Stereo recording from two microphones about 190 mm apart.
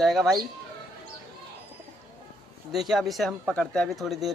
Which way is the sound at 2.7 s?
Centre (ahead or behind).